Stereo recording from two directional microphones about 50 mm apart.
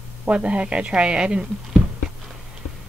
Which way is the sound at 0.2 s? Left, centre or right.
Right.